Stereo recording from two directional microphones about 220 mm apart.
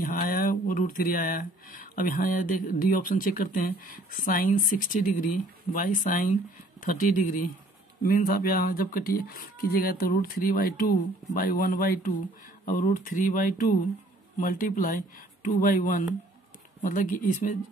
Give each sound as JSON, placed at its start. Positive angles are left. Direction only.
{"t": 0.0, "sound": "speech", "side_deg": 40}